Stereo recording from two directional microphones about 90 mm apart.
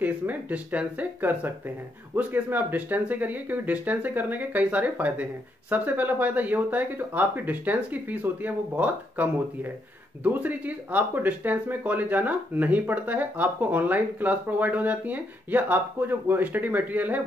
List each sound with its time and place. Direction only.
0.0 s speech: 20° right (ahead or behind)